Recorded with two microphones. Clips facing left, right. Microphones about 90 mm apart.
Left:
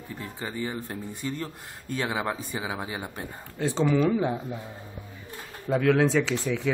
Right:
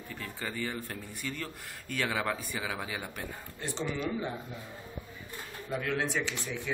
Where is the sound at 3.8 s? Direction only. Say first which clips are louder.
Left 11 dB; 90° left.